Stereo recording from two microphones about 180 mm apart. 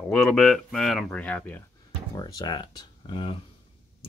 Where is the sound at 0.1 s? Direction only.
Centre (ahead or behind).